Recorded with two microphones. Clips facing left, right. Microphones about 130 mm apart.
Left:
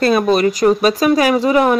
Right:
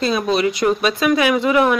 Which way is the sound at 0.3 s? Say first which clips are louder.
Left 4 dB; 45° left (ahead or behind).